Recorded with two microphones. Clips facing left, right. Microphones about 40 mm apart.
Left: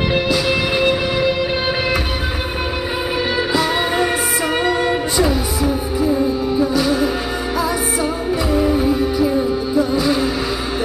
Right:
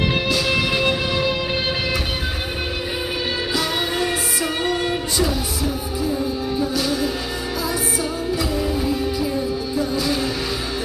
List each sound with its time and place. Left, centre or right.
0.1 s music: centre
4.6 s music: left
8.0 s music: left